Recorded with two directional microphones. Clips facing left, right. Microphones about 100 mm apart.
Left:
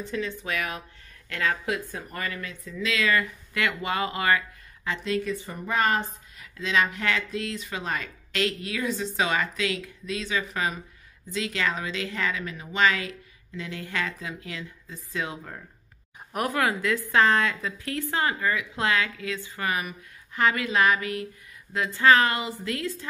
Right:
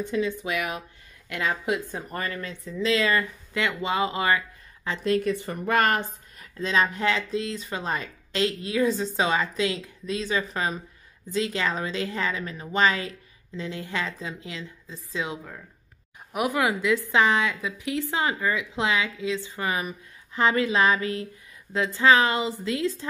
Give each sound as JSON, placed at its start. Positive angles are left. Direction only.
{"t": 0.0, "sound": "a woman's voice", "side_deg": -15}
{"t": 5.0, "sound": "speech", "side_deg": -45}
{"t": 5.3, "sound": "speech", "side_deg": -70}
{"t": 6.4, "sound": "a woman's voice", "side_deg": -35}
{"t": 16.3, "sound": "a woman's voice", "side_deg": -10}